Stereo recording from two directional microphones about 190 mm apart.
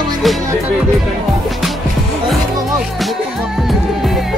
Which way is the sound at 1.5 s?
Centre (ahead or behind).